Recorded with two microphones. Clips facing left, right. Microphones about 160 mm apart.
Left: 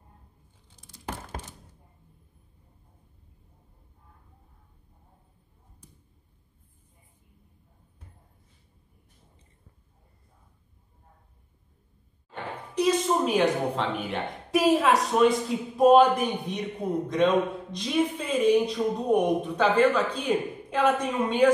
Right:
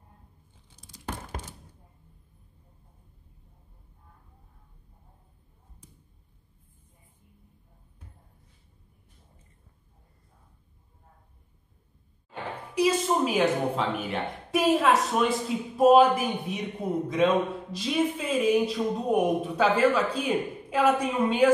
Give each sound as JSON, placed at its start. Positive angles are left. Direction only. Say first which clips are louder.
{"t": 12.7, "sound": "a woman's voice", "louder": "even", "side_deg": -5}